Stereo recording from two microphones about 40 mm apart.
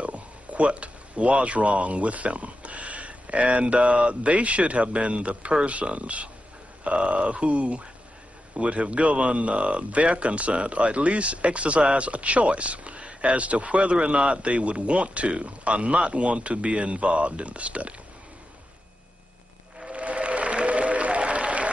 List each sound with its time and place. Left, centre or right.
0.0 s speech: right
19.9 s applause: right